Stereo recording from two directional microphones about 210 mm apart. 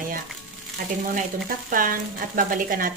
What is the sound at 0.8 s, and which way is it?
A woman's voice, 45° right (ahead or behind).